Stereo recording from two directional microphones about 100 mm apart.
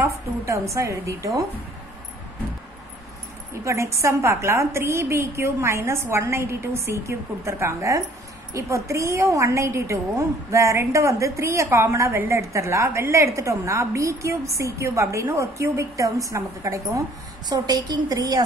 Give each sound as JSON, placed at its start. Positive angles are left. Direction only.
{"t": 0.0, "sound": "a woman's voice", "side_deg": -30}
{"t": 3.6, "sound": "a woman's voice", "side_deg": -30}
{"t": 17.5, "sound": "a woman's voice", "side_deg": -45}